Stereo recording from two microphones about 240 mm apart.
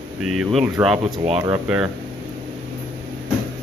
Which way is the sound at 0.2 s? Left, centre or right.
Centre.